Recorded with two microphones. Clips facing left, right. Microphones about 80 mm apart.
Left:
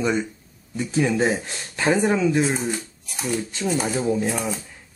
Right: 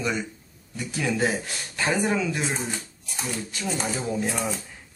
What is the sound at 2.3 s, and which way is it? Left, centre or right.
Speech, centre.